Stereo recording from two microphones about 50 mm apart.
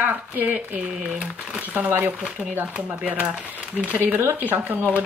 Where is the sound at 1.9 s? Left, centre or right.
Right.